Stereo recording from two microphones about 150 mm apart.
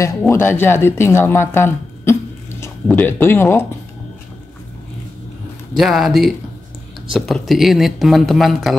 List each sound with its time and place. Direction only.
0.3 s speech: 15° left (ahead or behind)
5.8 s speech: centre (ahead or behind)